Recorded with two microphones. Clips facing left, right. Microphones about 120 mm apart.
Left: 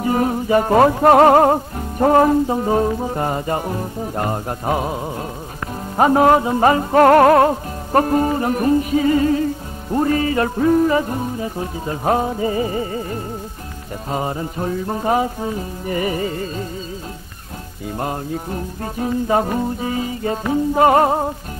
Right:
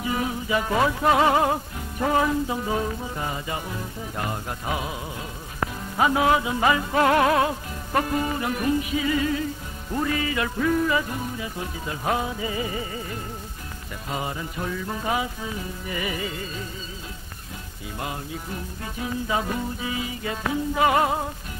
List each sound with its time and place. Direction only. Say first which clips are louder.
0.0 s music: left 9 dB; 45° left (ahead or behind)
17.9 s music: left 8 dB; 45° left (ahead or behind)